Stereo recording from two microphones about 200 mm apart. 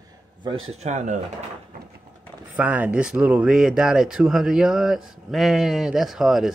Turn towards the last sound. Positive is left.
turn(degrees=0)  # may be behind; listen again after turning